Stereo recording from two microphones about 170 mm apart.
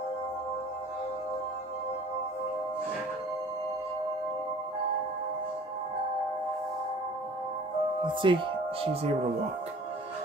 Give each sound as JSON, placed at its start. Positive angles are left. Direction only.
{"t": 8.0, "sound": "speech", "side_deg": -30}